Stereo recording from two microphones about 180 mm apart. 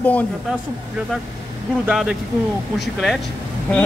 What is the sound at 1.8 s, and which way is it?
Speech, 5° right (ahead or behind).